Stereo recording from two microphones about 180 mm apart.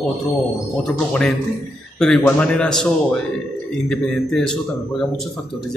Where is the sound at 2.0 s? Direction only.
5° left (ahead or behind).